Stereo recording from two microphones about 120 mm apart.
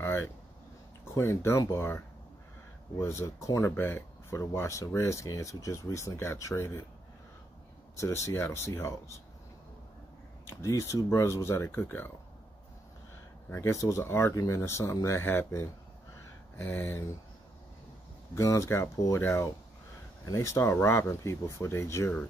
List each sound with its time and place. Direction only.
0.0 s a sound: 20° left (ahead or behind)
1.1 s speech: 25° left (ahead or behind)
8.0 s speech: 25° left (ahead or behind)
10.4 s speech: 25° left (ahead or behind)
13.5 s speech: 25° left (ahead or behind)
18.3 s speech: 25° left (ahead or behind)